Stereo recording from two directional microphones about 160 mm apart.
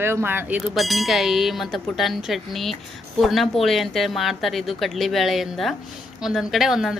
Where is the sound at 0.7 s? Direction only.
Centre (ahead or behind).